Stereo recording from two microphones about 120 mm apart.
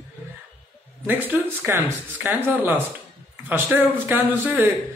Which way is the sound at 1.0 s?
20° right (ahead or behind).